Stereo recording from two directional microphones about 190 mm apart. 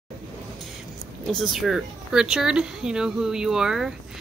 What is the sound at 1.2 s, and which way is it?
Speech, centre (ahead or behind).